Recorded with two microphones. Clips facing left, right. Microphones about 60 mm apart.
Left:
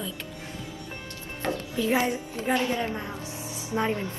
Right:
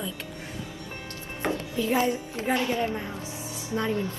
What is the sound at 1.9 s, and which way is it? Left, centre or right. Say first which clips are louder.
A woman's voice: even; left.